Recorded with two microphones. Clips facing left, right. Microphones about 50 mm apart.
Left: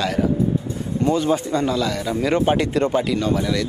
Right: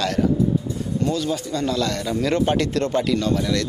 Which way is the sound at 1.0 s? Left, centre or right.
Left.